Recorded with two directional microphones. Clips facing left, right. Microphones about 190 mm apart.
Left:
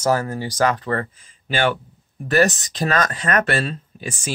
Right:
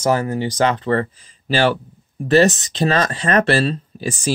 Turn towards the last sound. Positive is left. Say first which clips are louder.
# right 6 dB
turn(degrees=-35)  # may be behind; listen again after turning